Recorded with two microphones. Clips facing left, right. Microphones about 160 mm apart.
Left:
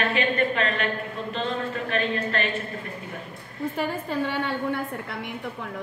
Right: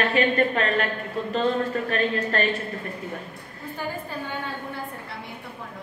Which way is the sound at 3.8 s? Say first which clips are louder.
Left 4 dB; 75° left (ahead or behind).